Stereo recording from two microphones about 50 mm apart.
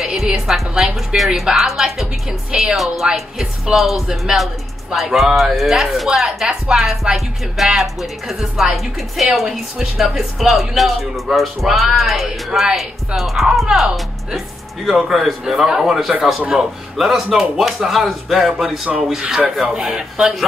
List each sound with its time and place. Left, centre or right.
0.0 s music: centre
0.5 s a woman's voice: centre
1.1 s a man's voice: centre
13.7 s a man's voice: centre
19.2 s a man's voice: centre